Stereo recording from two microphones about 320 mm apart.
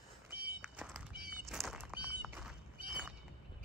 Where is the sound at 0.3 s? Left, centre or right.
Right.